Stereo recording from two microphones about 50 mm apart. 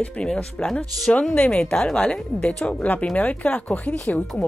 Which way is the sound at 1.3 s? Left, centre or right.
Left.